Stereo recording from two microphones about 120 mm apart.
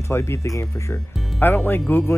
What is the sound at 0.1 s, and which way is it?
Speech, 20° left (ahead or behind).